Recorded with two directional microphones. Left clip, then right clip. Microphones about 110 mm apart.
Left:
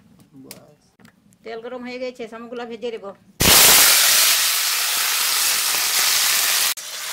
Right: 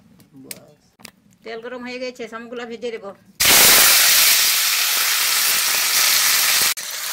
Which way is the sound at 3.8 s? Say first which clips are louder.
Right 1 dB; centre (ahead or behind).